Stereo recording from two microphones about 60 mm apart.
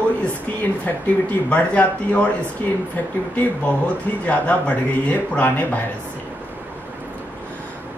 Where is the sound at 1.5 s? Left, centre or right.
Left.